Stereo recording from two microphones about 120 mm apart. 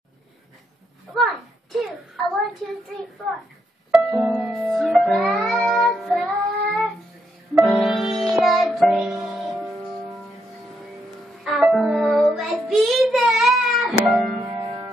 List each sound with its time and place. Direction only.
1.1 s a sound: centre (ahead or behind)
3.9 s speech: 5° right (ahead or behind)
5.4 s child singing: centre (ahead or behind)
7.6 s music: centre (ahead or behind)
11.4 s music: centre (ahead or behind)
14.4 s music: 35° right (ahead or behind)